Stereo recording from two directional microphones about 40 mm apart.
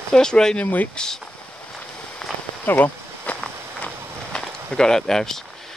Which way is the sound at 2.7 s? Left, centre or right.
Left.